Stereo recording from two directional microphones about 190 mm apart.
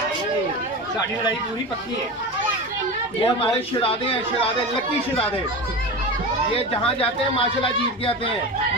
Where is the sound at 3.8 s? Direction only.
30° left (ahead or behind).